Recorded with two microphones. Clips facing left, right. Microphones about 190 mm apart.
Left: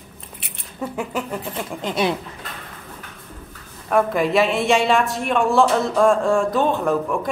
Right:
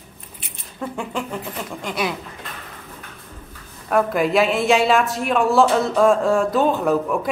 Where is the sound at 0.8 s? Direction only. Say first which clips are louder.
Left 1 dB; 5° left (ahead or behind).